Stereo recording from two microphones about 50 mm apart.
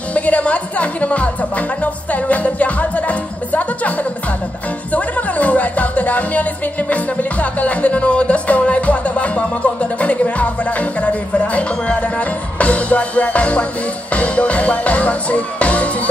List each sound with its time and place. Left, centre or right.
0.1 s speech: left